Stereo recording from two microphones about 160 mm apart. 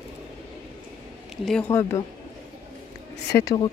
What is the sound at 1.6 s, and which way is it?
Speech, 15° left (ahead or behind).